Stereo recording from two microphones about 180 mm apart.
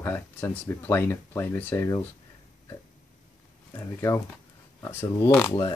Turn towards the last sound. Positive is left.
turn(degrees=10)  # may be behind; listen again after turning